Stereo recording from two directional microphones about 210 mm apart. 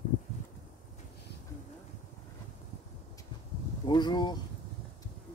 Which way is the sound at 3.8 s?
20° left (ahead or behind).